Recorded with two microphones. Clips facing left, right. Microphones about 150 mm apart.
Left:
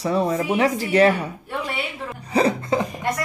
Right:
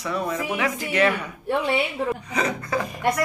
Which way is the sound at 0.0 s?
30° left (ahead or behind).